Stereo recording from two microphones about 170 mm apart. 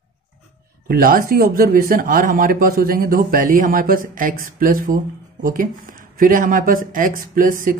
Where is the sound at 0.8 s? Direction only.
60° right (ahead or behind).